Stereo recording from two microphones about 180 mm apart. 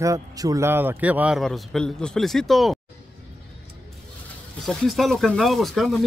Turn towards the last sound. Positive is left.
turn(degrees=0)  # may be behind; listen again after turning